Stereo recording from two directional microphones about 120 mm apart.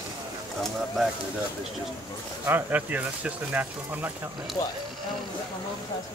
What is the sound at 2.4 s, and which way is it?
Speech, 15° right (ahead or behind).